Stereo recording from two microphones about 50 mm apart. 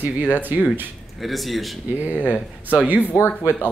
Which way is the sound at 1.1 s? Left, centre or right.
Centre.